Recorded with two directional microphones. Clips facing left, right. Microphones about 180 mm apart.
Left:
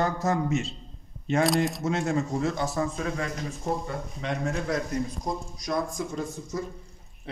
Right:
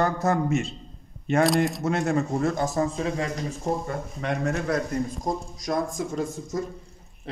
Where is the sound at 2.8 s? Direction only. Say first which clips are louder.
Right 3 dB; 30° right (ahead or behind).